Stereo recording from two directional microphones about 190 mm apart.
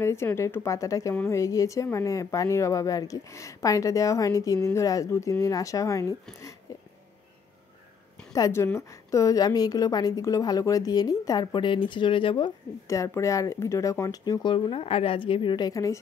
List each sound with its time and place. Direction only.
0.0 s speech: 15° left (ahead or behind)
6.7 s a sound: 15° left (ahead or behind)
8.3 s a woman's voice: 15° left (ahead or behind)